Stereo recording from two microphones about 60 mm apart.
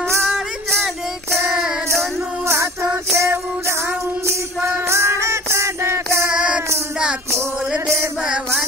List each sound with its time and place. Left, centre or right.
0.3 s music: centre
2.4 s music: right
6.3 s music: centre